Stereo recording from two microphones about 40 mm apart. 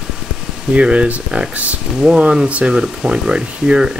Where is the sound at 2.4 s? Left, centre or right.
Right.